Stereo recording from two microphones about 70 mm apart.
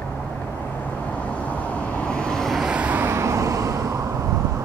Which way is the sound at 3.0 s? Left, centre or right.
Right.